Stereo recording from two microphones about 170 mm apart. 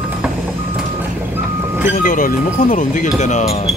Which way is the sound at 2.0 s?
50° left (ahead or behind).